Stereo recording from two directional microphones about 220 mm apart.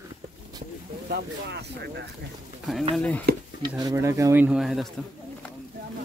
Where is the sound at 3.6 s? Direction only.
15° right (ahead or behind); by 4.9 s centre (ahead or behind).